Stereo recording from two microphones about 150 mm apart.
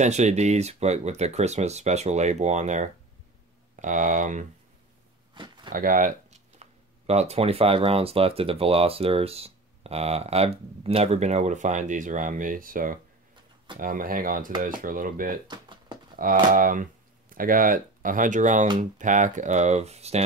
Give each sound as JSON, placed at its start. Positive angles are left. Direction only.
{"t": 0.0, "sound": "speech", "side_deg": -50}
{"t": 5.3, "sound": "a sound", "side_deg": -30}
{"t": 5.7, "sound": "speech", "side_deg": -65}
{"t": 6.6, "sound": "speech", "side_deg": -45}
{"t": 15.4, "sound": "a sound", "side_deg": -30}
{"t": 16.2, "sound": "speech", "side_deg": -70}